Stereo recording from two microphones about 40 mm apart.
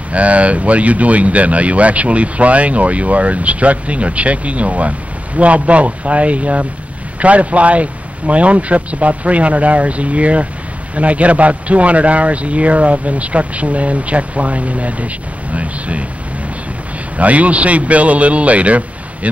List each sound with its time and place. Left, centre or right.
0.1 s speech: right
17.2 s speech: right